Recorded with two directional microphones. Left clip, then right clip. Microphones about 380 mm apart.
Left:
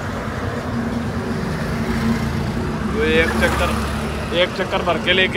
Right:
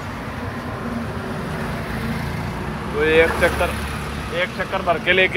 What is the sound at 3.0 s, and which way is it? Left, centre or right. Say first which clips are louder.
Speech: right 2 dB; centre.